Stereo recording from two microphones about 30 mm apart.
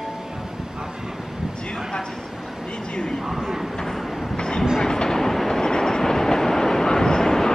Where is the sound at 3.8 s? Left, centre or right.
Centre.